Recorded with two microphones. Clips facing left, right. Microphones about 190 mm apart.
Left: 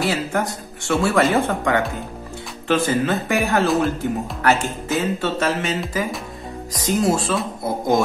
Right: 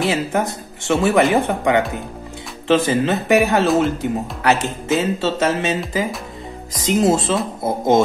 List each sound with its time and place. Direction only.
0.0 s speech: 20° right (ahead or behind)
6.9 s speech: 25° right (ahead or behind)